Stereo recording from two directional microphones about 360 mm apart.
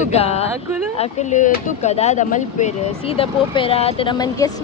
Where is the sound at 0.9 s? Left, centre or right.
Centre.